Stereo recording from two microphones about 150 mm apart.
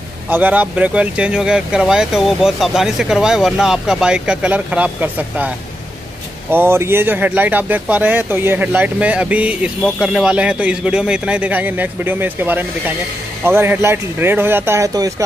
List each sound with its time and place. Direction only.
0.3 s speech: 10° right (ahead or behind)
6.5 s speech: 15° right (ahead or behind)